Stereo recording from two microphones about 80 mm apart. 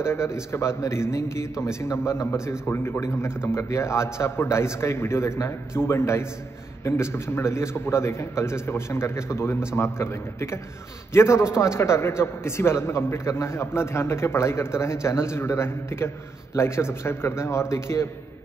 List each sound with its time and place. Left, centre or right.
0.0 s a man's voice: left